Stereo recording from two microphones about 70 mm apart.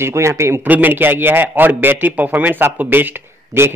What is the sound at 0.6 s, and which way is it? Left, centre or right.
A man's voice, right.